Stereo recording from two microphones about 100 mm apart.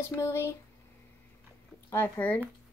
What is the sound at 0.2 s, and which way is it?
Speech, 25° left (ahead or behind).